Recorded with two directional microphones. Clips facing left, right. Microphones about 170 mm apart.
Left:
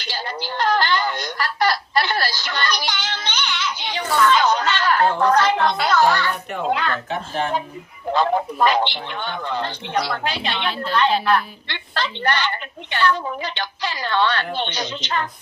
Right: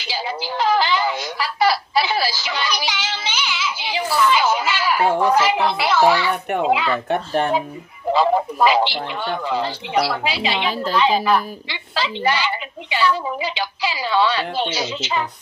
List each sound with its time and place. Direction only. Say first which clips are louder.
0.0 s a sound: right 3 dB; 5° right (ahead or behind)
6.7 s a woman's voice: right 2 dB; 5° right (ahead or behind)
7.1 s speech: right 5 dB; 55° right (ahead or behind)
8.1 s a woman's voice: right 2 dB; 5° right (ahead or behind)